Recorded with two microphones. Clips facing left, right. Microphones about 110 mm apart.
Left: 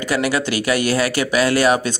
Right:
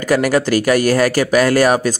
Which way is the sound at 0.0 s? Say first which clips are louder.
Right 5 dB; 45° right (ahead or behind).